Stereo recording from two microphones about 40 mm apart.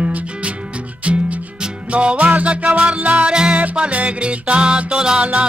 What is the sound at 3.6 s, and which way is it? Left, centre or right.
Music, right.